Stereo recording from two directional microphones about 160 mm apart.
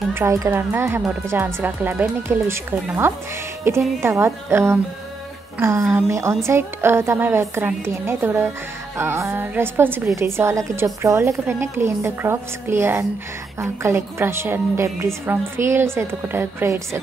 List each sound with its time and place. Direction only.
0.1 s a woman's voice: 15° right (ahead or behind)